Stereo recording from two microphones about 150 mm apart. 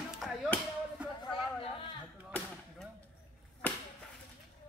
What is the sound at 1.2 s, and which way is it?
Chatter, 35° left (ahead or behind).